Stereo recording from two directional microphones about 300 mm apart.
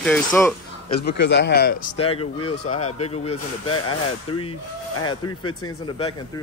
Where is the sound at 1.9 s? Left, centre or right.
Centre.